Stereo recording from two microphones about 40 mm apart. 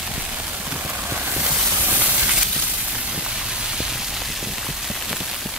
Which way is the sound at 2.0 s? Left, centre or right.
Right.